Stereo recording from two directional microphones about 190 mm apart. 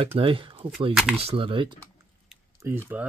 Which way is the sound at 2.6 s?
15° right (ahead or behind).